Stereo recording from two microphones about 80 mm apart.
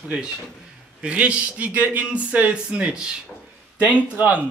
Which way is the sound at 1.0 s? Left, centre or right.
Centre.